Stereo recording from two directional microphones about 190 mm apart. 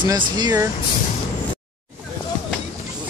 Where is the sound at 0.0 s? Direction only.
20° right (ahead or behind).